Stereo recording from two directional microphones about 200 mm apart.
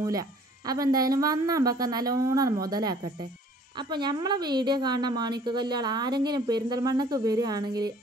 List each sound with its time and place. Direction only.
0.0 s speech: 15° right (ahead or behind)